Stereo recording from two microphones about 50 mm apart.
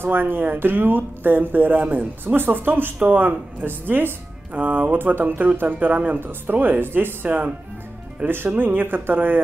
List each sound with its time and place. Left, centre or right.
0.0 s speech: right
2.2 s speech: right